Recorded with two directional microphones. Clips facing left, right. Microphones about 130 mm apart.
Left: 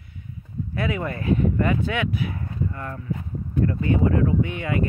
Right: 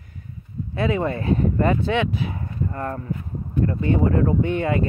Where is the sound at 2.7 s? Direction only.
40° right (ahead or behind).